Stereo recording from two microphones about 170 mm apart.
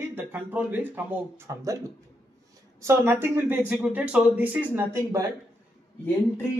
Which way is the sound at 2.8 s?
15° right (ahead or behind).